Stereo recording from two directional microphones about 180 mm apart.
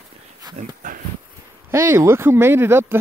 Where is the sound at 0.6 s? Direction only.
50° right (ahead or behind).